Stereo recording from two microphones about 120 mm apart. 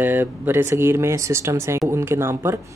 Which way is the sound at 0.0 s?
15° right (ahead or behind).